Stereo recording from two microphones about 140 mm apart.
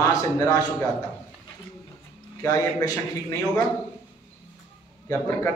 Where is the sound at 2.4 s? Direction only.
25° left (ahead or behind).